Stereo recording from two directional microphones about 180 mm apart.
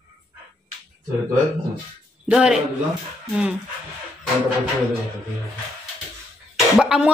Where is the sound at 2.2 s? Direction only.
5° right (ahead or behind).